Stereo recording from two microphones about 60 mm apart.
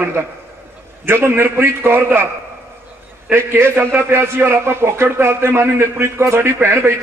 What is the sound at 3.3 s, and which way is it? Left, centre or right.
A man's voice, right.